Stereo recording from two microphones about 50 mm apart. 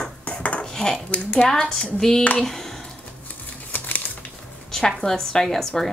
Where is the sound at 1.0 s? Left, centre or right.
Left.